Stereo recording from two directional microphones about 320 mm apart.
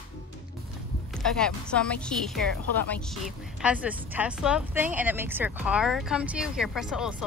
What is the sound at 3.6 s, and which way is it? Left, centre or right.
Speech, centre.